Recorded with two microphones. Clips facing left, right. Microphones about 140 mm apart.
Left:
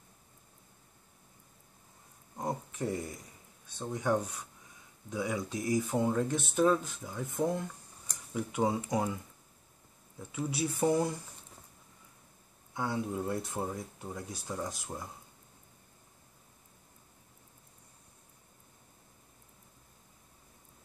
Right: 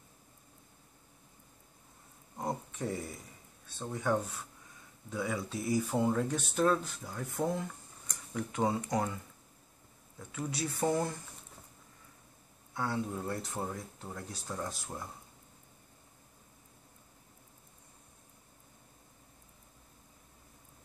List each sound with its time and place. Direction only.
2.5 s speech: centre (ahead or behind)
5.1 s speech: centre (ahead or behind)
12.7 s speech: 10° left (ahead or behind)